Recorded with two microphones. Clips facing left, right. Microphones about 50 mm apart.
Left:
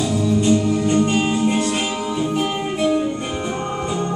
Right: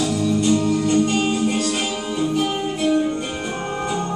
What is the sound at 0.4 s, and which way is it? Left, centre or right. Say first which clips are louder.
Music: left 1 dB; left.